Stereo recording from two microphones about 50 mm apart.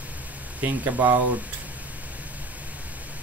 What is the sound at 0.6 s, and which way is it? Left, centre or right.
Speech, right.